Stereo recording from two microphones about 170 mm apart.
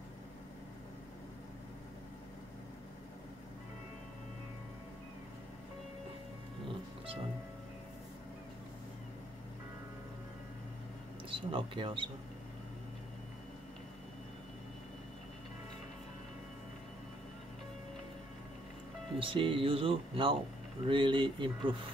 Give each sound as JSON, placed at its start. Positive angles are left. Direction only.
{"t": 11.2, "sound": "speech", "side_deg": -30}
{"t": 19.1, "sound": "speech", "side_deg": -30}